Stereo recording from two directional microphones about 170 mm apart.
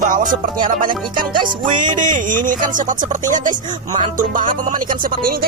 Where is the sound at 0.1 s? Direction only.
50° right (ahead or behind).